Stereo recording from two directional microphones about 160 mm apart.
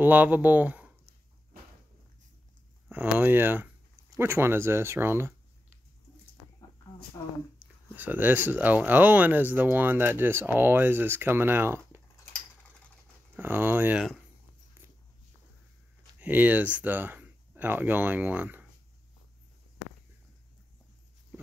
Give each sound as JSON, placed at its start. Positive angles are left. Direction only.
{"t": 0.0, "sound": "speech", "side_deg": -10}
{"t": 2.9, "sound": "speech", "side_deg": -10}
{"t": 7.2, "sound": "speech", "side_deg": 25}
{"t": 7.5, "sound": "speech", "side_deg": -10}
{"t": 13.4, "sound": "speech", "side_deg": -15}
{"t": 16.2, "sound": "speech", "side_deg": -10}